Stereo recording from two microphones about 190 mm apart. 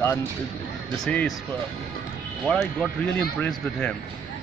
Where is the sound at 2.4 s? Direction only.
5° left (ahead or behind).